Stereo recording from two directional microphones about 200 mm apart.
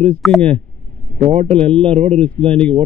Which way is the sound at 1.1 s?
35° right (ahead or behind).